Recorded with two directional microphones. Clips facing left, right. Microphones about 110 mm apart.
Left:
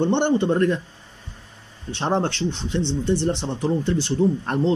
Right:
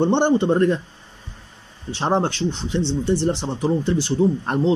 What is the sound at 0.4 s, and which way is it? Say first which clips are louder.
Speech: right 2 dB; 25° right (ahead or behind).